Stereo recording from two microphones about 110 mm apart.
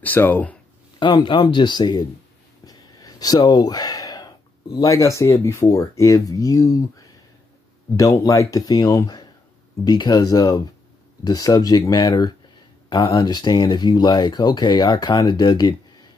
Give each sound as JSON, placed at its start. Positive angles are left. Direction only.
{"t": 0.0, "sound": "speech", "side_deg": 15}
{"t": 0.9, "sound": "speech", "side_deg": 45}
{"t": 2.6, "sound": "a sound", "side_deg": 35}
{"t": 4.7, "sound": "speech", "side_deg": 30}